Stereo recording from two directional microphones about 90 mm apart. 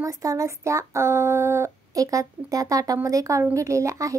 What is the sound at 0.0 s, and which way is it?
Speech, 40° right (ahead or behind).